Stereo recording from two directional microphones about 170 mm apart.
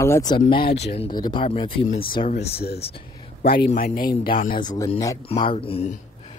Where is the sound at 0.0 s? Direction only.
20° left (ahead or behind); by 3.0 s 35° left (ahead or behind).